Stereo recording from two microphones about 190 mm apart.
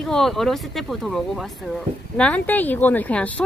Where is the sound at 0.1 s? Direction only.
Centre (ahead or behind).